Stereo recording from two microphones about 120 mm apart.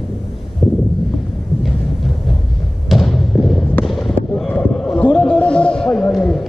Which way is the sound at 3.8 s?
5° left (ahead or behind).